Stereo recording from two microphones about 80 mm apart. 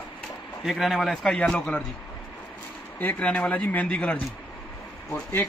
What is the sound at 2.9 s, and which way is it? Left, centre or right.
Speech, centre.